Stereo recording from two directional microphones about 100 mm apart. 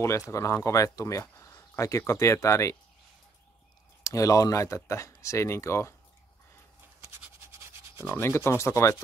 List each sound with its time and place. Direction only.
0.3 s speech: 30° left (ahead or behind)
4.0 s speech: 35° left (ahead or behind)
8.0 s sanding: 25° left (ahead or behind)